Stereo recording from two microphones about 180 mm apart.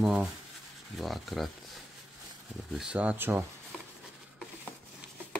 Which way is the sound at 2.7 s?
5° right (ahead or behind).